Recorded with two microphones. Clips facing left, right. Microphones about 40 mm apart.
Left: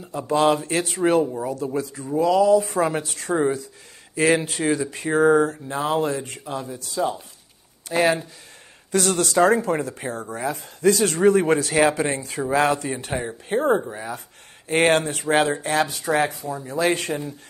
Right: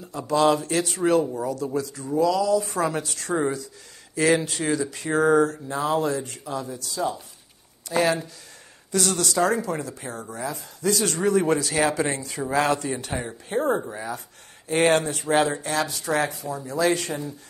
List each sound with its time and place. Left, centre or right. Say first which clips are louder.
0.3 s speech: left 1 dB; left
7.9 s speech: left 2 dB; left
8.9 s speech: left 4 dB; left
13.1 s speech: left 3 dB; centre
13.5 s speech: left 3 dB; left